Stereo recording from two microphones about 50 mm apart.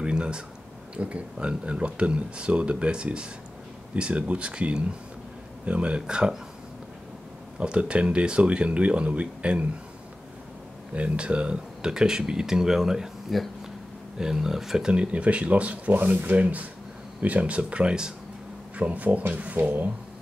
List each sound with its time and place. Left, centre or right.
0.0 s a sound: centre
0.9 s speech: right
7.5 s speech: right
11.0 s speech: right
14.9 s speech: right
18.8 s speech: right